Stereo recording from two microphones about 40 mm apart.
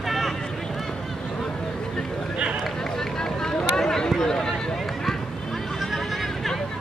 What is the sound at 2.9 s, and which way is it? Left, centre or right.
Run, centre.